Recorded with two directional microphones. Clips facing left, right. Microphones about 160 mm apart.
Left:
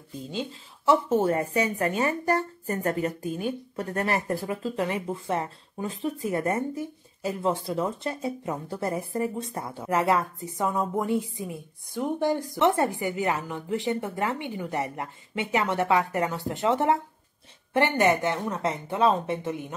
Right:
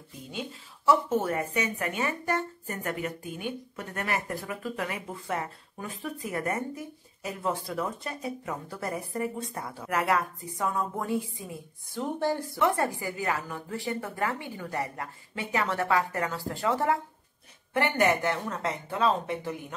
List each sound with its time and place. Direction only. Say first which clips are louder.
0.3 s speech: left 3 dB; 30° left (ahead or behind)